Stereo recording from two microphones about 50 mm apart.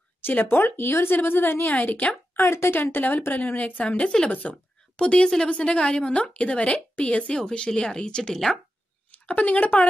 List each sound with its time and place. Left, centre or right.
0.5 s speech: left
2.3 s speech: left
2.8 s a woman's voice: left
4.0 s speech: centre
4.3 s a woman's voice: left
4.9 s a woman's voice: centre
9.1 s speech: left